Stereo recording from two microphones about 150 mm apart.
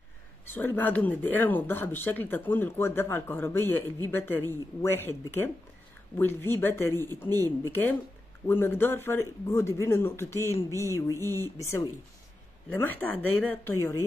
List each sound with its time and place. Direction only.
0.5 s speech: 15° left (ahead or behind)